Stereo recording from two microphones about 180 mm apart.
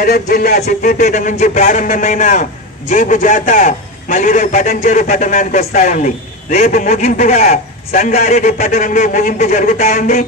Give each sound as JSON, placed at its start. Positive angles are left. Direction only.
{"t": 0.0, "sound": "a man's voice", "side_deg": 55}